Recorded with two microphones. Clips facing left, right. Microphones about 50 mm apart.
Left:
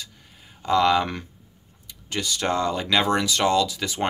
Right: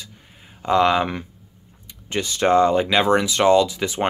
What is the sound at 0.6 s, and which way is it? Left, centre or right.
Speech, right.